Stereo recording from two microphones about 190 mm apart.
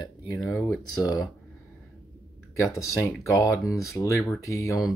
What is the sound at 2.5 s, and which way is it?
Speech, 15° left (ahead or behind).